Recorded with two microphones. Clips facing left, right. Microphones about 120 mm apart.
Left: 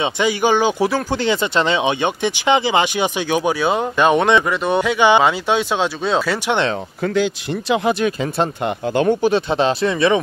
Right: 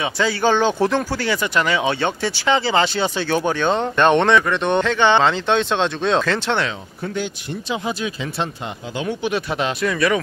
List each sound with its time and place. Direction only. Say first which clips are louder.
0.0 s speech: left 2 dB; 15° left (ahead or behind)
1.1 s speech: left 3 dB; 20° left (ahead or behind)
7.0 s speech: left 7 dB; 85° left; by 9.3 s 50° left (ahead or behind)
9.3 s speech: left 5 dB; 30° left (ahead or behind)